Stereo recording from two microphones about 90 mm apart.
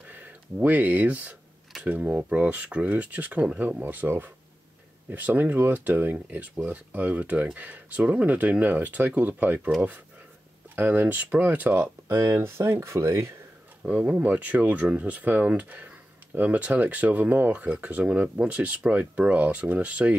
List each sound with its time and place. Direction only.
0.1 s speech: 20° right (ahead or behind)
10.8 s speech: 20° right (ahead or behind)
13.8 s speech: 15° right (ahead or behind)